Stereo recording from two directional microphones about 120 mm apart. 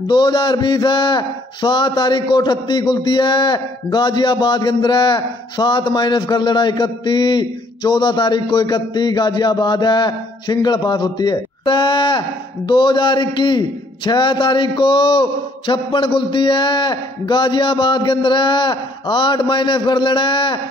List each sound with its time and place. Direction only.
0.0 s a man's voice: 35° left (ahead or behind)